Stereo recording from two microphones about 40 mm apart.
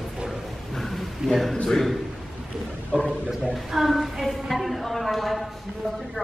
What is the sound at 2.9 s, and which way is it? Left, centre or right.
Speech, centre.